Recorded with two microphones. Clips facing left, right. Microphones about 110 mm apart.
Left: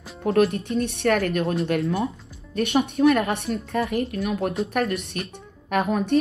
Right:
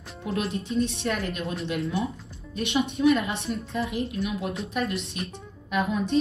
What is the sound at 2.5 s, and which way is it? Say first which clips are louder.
A woman's voice: left 4 dB; 60° left (ahead or behind).